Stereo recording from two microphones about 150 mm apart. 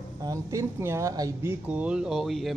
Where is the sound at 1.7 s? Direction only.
10° right (ahead or behind).